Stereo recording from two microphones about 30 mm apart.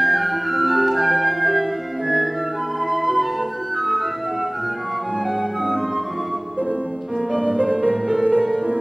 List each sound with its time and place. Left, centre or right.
0.0 s music: centre
2.9 s flute: centre
8.2 s music: right